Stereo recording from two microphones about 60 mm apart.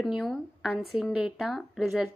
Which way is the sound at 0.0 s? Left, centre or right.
Centre.